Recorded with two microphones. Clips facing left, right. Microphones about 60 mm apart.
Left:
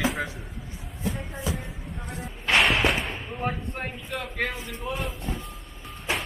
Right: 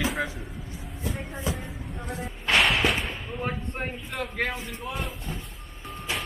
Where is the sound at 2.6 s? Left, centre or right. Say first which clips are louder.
Left 1 dB; centre.